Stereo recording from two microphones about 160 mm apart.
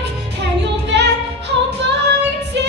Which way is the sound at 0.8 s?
90° right.